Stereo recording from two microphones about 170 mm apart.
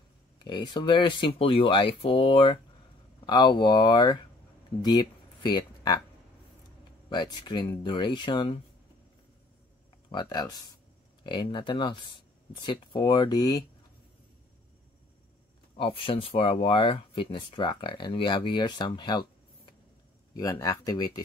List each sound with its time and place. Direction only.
0.4 s speech: 25° left (ahead or behind)
7.1 s speech: 25° left (ahead or behind)
10.0 s speech: 25° left (ahead or behind)
15.8 s speech: 35° left (ahead or behind)
20.3 s speech: 20° left (ahead or behind)